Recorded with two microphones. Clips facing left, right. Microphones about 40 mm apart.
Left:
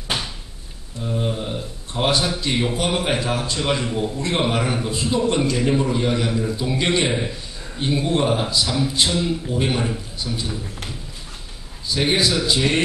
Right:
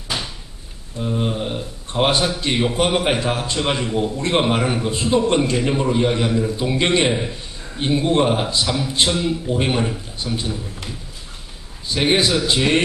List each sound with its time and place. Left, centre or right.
1.0 s a man's voice: centre
5.6 s a man's voice: centre
11.9 s a man's voice: right